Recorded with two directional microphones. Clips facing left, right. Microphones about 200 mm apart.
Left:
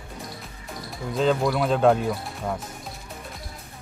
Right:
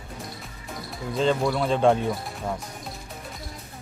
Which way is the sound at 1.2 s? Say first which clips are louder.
Left 1 dB; centre (ahead or behind).